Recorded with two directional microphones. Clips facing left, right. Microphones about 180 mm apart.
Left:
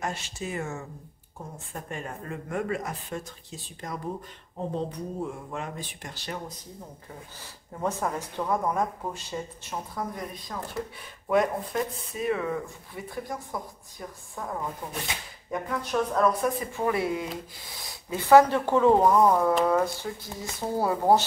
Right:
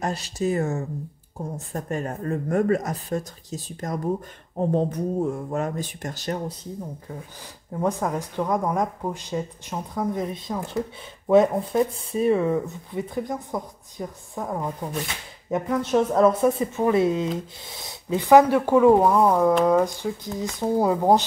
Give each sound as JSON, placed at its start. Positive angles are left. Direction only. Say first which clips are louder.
{"t": 0.0, "sound": "speech", "louder": "right 8 dB", "side_deg": -35}
{"t": 7.8, "sound": "speech", "louder": "right 4 dB", "side_deg": -15}